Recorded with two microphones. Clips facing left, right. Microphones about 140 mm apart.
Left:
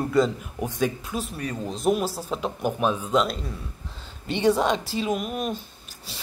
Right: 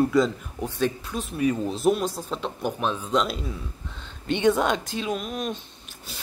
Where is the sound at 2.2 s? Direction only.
5° left (ahead or behind).